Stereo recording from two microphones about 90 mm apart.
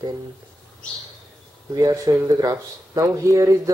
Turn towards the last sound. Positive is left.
turn(degrees=-35)  # may be behind; listen again after turning